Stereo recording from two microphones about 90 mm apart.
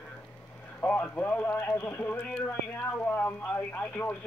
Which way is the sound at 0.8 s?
15° left (ahead or behind).